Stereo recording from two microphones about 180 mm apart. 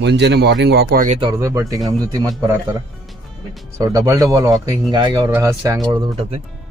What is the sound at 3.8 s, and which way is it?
Speech, 20° right (ahead or behind).